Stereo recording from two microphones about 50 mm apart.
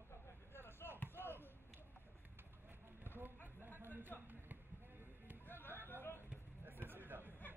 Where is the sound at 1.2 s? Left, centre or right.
Right.